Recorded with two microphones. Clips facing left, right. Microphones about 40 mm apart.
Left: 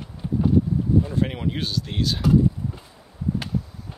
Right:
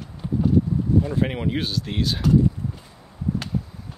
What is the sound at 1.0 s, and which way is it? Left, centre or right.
Speech, centre.